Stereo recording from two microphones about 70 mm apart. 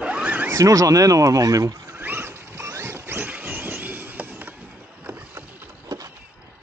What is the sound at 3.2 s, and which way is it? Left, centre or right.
Vehicle, right.